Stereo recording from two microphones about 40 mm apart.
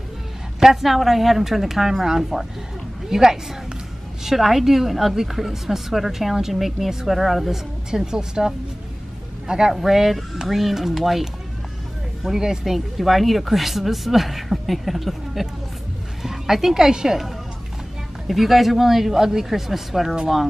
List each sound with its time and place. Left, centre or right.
0.6 s a sound: centre
0.8 s a woman's voice: centre
7.9 s speech: centre
9.7 s a woman's voice: centre
18.2 s speech: centre